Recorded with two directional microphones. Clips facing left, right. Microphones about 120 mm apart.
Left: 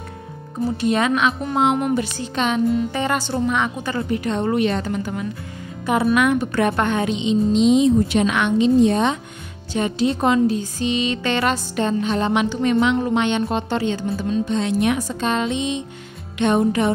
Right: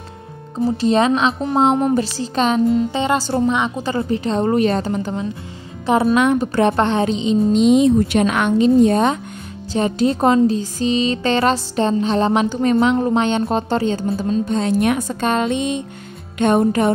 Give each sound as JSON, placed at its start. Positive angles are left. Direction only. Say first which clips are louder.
{"t": 0.7, "sound": "speech", "louder": "right 3 dB", "side_deg": -30}
{"t": 2.9, "sound": "a woman's voice", "louder": "right 4 dB", "side_deg": -20}